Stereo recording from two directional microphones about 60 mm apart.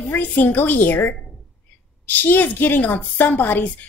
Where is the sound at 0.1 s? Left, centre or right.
Left.